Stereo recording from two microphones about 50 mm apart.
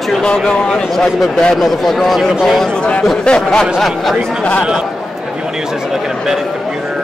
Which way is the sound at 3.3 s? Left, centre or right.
Centre.